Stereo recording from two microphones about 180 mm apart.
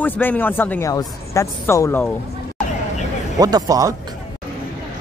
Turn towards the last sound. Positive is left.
turn(degrees=-20)  # may be behind; listen again after turning